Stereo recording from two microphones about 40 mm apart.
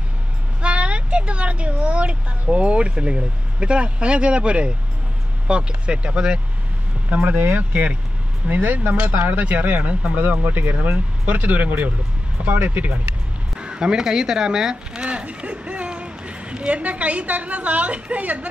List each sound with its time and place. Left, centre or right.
0.6 s speech: right
7.2 s speech: right
10.1 s speech: right
13.6 s speech: right
15.0 s speech: right